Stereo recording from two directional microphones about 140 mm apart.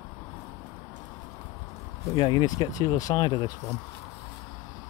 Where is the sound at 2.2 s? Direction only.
35° left (ahead or behind).